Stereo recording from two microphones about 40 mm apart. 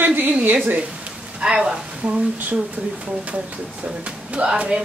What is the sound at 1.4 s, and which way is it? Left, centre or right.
Speech, right.